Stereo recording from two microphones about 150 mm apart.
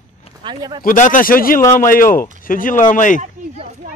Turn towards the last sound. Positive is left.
turn(degrees=60)  # may be behind; listen again after turning